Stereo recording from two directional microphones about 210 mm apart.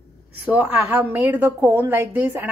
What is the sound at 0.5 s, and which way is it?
A woman's voice, 5° right (ahead or behind).